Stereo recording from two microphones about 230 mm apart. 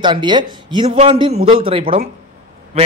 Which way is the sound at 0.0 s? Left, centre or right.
Centre.